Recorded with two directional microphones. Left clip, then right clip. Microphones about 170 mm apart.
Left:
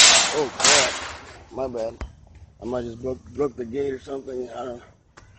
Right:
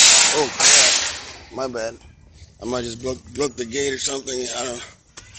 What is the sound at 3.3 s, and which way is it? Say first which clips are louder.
Speech: right 1 dB; centre (ahead or behind).